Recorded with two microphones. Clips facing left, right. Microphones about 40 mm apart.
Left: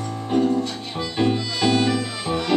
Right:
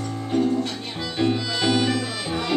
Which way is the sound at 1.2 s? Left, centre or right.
Centre.